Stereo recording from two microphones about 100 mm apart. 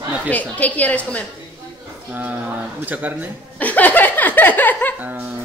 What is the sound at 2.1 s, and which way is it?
Speech, 15° right (ahead or behind).